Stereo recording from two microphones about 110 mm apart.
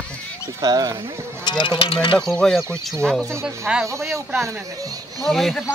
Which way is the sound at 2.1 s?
5° left (ahead or behind).